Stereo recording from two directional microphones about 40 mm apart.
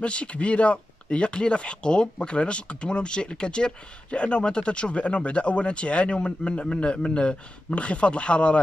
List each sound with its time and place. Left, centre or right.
0.0 s speech: left